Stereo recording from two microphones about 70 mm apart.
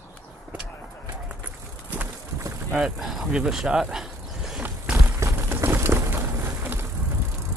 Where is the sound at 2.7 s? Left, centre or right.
Centre.